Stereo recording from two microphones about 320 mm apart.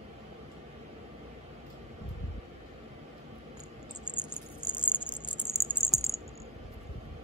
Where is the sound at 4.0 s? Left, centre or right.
Centre.